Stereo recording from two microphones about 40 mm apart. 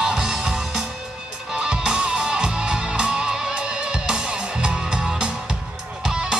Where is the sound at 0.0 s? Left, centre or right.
Centre.